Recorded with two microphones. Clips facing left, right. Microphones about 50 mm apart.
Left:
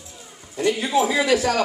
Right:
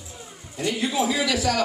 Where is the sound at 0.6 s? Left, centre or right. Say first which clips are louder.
Left 4 dB; left.